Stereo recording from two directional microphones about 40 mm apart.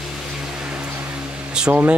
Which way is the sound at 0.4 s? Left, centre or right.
Centre.